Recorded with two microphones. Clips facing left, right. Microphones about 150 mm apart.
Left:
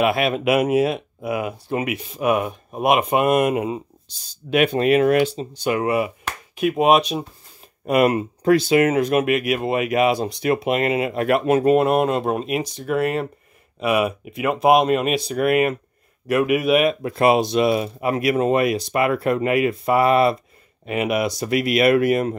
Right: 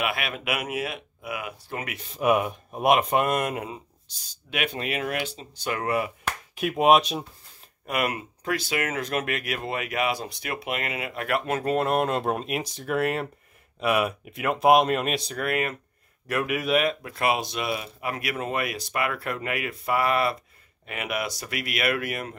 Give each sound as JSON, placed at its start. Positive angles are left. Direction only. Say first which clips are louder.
{"t": 0.0, "sound": "speech", "louder": "left 11 dB", "side_deg": 30}
{"t": 1.8, "sound": "speech", "louder": "left 4 dB", "side_deg": 10}
{"t": 4.3, "sound": "speech", "louder": "left 12 dB", "side_deg": 40}
{"t": 5.5, "sound": "speech", "louder": "left 7 dB", "side_deg": 15}
{"t": 6.2, "sound": "chop", "louder": "left 6 dB", "side_deg": -5}
{"t": 6.8, "sound": "speech", "louder": "left 2 dB", "side_deg": 0}
{"t": 7.8, "sound": "speech", "louder": "left 11 dB", "side_deg": 30}
{"t": 17.0, "sound": "speech", "louder": "left 9 dB", "side_deg": 30}